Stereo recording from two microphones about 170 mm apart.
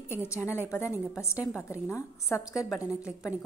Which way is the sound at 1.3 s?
10° right (ahead or behind).